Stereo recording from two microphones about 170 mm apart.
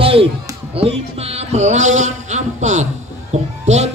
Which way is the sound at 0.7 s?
35° right (ahead or behind).